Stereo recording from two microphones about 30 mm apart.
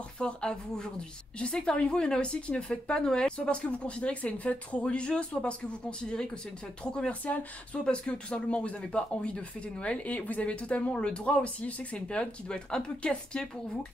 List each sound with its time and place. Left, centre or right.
0.2 s speech: left
3.0 s speech: left
3.3 s speech: left
4.8 s speech: left
6.0 s speech: left
7.1 s speech: left
10.5 s speech: left
12.1 s speech: left